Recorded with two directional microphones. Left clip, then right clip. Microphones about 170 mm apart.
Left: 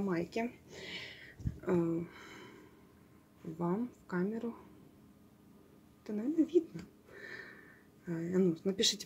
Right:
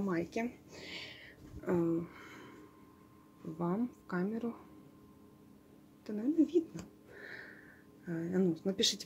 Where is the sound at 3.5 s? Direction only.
Centre (ahead or behind).